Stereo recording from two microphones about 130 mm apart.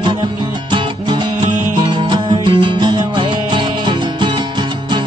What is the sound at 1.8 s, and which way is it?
Music, 40° right (ahead or behind).